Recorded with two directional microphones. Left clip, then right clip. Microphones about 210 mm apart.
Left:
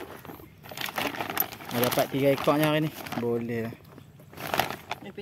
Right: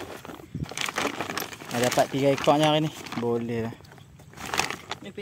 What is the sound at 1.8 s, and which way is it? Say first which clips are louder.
Speech: right 2 dB; centre (ahead or behind).